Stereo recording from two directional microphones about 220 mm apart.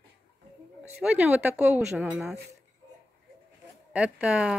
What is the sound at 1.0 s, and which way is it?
Speech, 5° right (ahead or behind).